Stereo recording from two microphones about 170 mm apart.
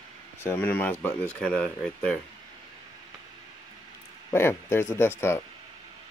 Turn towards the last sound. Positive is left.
turn(degrees=15)  # may be behind; listen again after turning